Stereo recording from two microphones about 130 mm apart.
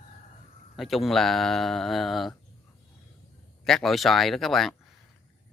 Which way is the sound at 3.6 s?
Centre (ahead or behind).